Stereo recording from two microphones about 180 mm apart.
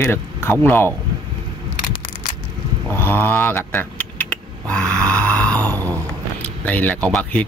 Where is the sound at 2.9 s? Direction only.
10° left (ahead or behind).